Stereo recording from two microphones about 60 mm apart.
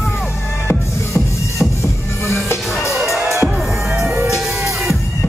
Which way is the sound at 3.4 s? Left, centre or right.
Centre.